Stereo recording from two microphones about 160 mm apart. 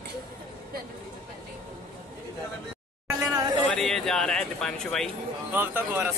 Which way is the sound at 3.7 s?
5° left (ahead or behind).